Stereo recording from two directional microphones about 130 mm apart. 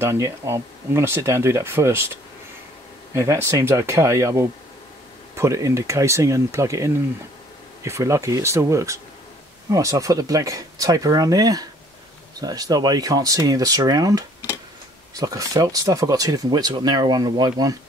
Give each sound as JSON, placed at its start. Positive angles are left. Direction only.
{"t": 0.0, "sound": "speech", "side_deg": -20}
{"t": 3.2, "sound": "speech", "side_deg": -20}